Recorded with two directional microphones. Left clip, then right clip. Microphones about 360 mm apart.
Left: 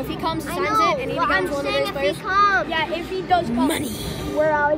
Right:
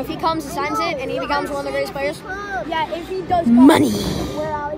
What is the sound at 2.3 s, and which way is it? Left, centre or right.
Vehicle, centre.